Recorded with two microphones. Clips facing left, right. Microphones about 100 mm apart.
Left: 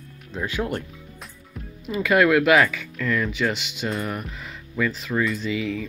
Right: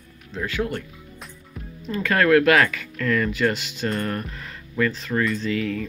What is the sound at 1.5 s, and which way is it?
Speech, 5° left (ahead or behind).